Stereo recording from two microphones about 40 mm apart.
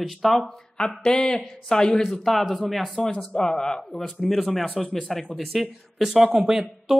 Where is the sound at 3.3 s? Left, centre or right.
Centre.